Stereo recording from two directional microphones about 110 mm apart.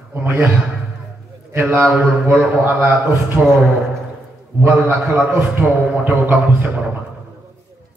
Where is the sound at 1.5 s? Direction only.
20° right (ahead or behind).